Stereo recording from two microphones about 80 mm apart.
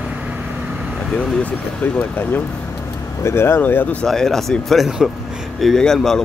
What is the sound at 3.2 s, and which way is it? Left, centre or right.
Speech, left.